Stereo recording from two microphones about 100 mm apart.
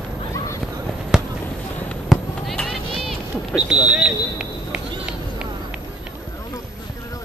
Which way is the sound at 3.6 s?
10° right (ahead or behind).